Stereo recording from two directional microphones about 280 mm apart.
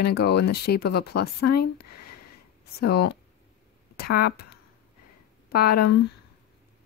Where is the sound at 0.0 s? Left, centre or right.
Left.